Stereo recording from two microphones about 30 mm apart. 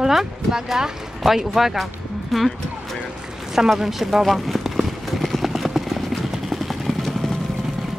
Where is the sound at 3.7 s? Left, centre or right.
Centre.